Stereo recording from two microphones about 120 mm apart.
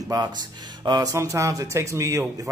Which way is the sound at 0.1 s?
30° right (ahead or behind).